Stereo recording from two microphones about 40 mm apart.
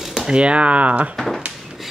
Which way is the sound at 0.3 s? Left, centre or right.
Right.